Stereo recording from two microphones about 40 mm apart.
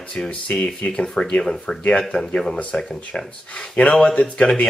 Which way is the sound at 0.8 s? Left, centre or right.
Left.